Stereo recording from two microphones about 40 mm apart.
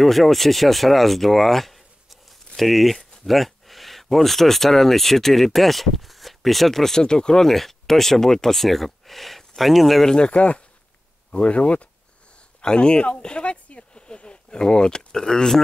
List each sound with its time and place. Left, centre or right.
0.0 s speech: centre
7.4 s speech: centre
10.0 s speech: left
12.6 s speech: left